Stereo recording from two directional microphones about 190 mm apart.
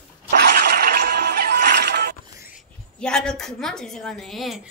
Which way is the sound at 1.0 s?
55° right (ahead or behind).